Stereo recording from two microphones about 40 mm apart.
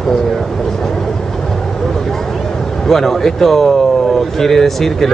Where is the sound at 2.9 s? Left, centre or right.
Centre.